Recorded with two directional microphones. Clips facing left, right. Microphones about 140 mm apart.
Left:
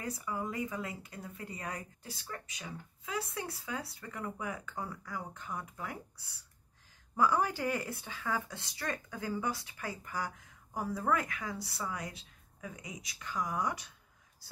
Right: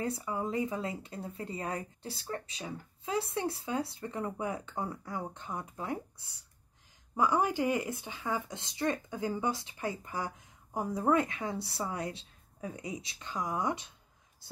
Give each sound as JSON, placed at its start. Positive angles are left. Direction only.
{"t": 0.0, "sound": "speech", "side_deg": -25}